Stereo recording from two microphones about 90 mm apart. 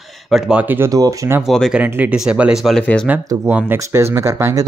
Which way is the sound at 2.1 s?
10° right (ahead or behind).